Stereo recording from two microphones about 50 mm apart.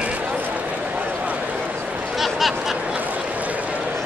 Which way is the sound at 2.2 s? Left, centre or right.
Centre.